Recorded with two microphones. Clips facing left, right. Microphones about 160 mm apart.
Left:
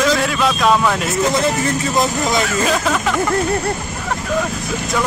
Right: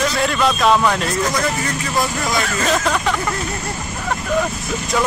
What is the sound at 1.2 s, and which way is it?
Speech, 25° left (ahead or behind).